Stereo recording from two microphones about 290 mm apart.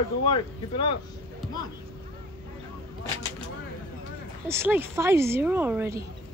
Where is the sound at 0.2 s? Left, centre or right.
Centre.